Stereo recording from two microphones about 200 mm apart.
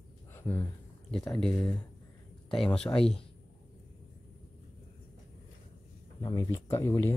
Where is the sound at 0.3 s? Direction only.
10° left (ahead or behind).